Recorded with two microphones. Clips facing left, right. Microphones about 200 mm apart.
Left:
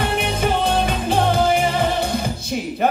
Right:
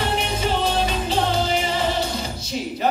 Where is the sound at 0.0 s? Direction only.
55° left (ahead or behind).